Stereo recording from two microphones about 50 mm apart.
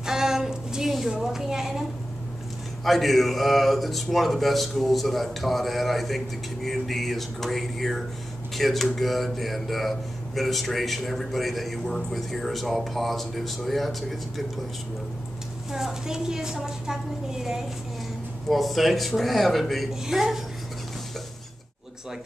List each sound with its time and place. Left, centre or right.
0.0 s a sound: centre
1.2 s a woman's voice: centre
2.8 s speech: centre
15.7 s a woman's voice: centre
19.9 s a woman's voice: centre